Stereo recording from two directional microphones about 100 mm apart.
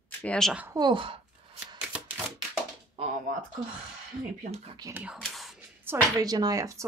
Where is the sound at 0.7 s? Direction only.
50° right (ahead or behind).